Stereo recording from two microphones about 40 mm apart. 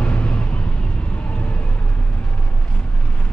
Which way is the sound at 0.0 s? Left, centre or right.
Left.